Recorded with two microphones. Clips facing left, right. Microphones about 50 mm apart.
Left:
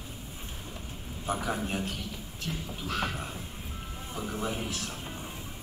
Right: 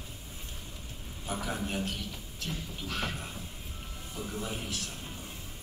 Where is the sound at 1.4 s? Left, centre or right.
Left.